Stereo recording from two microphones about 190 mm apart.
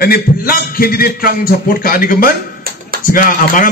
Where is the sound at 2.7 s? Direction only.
50° right (ahead or behind).